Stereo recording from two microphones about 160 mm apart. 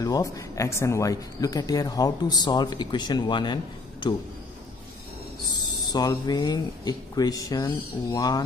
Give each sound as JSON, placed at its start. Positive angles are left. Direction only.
{"t": 0.0, "sound": "speech", "side_deg": 20}
{"t": 5.9, "sound": "speech", "side_deg": 25}